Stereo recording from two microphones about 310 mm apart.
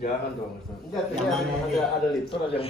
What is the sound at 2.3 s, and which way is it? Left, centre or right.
Speech, centre.